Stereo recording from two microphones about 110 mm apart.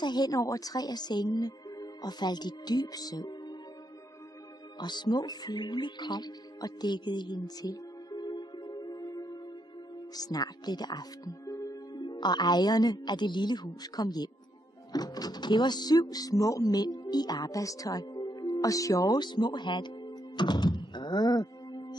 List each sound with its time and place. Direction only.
0.0 s a woman's voice: 40° left (ahead or behind)
4.7 s music: 40° left (ahead or behind)
10.1 s speech: 35° left (ahead or behind)